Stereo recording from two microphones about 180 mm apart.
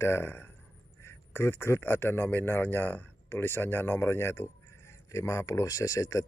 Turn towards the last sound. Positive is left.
turn(degrees=15)  # may be behind; listen again after turning